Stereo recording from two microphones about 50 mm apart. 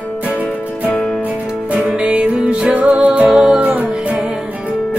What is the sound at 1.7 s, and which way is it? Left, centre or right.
Music, right.